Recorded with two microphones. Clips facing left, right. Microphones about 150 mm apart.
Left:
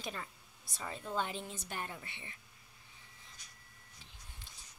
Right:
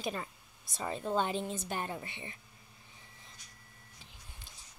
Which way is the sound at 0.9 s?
25° right (ahead or behind).